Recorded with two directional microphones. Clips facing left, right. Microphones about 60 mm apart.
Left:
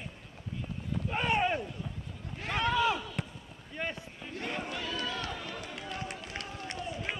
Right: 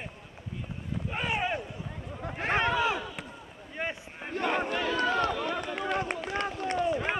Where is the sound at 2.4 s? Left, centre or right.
Right.